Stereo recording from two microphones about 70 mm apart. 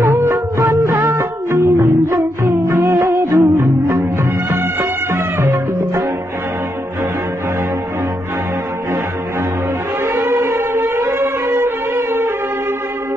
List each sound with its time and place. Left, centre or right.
0.0 s music: right
10.0 s music: right